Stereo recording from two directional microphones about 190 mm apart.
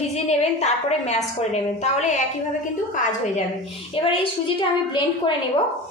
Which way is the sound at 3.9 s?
30° left (ahead or behind).